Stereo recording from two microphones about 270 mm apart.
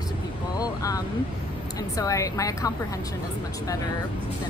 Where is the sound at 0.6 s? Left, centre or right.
Centre.